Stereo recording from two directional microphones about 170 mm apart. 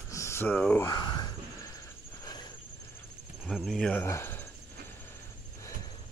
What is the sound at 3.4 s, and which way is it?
Speech, centre (ahead or behind).